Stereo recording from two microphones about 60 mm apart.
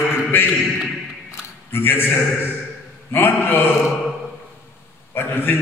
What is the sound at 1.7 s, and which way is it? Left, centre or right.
A man's voice, left.